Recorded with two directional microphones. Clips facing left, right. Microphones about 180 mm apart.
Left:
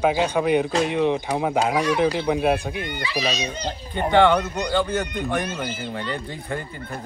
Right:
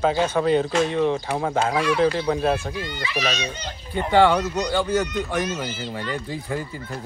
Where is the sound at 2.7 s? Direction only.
60° left (ahead or behind).